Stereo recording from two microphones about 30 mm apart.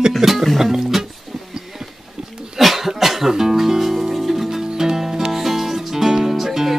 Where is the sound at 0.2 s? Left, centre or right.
Centre.